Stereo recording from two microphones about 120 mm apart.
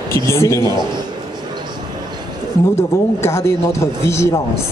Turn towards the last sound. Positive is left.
turn(degrees=20)  # may be behind; listen again after turning